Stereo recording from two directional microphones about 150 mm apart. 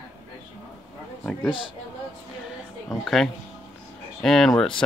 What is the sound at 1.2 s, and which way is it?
Speech, 5° left (ahead or behind).